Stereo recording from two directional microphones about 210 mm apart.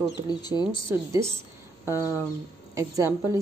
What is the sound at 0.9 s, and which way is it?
A woman's voice, 15° right (ahead or behind).